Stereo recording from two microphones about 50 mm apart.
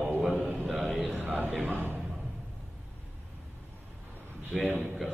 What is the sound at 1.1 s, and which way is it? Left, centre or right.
Speech, right.